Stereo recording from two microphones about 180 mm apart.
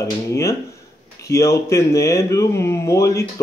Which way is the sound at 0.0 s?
15° left (ahead or behind).